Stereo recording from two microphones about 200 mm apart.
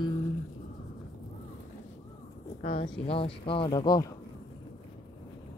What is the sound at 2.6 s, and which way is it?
Speech, 30° left (ahead or behind).